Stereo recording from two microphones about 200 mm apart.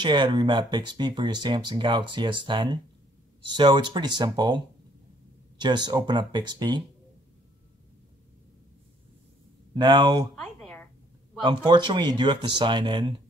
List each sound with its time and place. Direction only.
0.0 s speech: 20° right (ahead or behind)
9.8 s speech: 20° right (ahead or behind)
10.3 s a sound: 5° left (ahead or behind)
11.4 s speech: 25° right (ahead or behind)